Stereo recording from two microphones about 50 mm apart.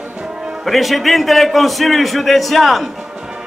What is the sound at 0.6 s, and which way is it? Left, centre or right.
A man's voice, centre.